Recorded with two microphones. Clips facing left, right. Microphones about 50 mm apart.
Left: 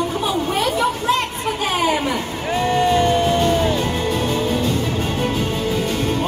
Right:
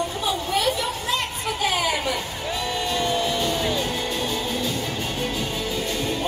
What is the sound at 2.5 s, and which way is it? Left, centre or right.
Music, left.